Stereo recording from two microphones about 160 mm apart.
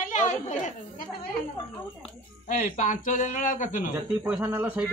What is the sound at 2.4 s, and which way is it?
Speech, 60° left (ahead or behind).